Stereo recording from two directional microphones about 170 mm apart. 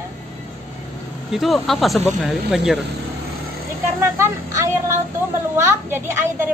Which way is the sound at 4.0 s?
15° right (ahead or behind).